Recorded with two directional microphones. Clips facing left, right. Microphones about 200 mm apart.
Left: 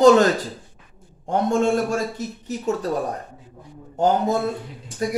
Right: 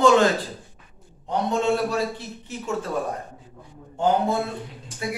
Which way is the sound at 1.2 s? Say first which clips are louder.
Left 3 dB; 50° left (ahead or behind).